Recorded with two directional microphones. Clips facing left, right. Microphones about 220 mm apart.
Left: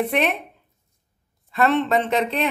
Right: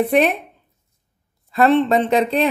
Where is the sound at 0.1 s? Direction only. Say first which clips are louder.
Right 6 dB; 35° right (ahead or behind).